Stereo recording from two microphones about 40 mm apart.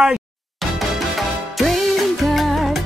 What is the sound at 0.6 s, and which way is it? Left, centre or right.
Music, centre.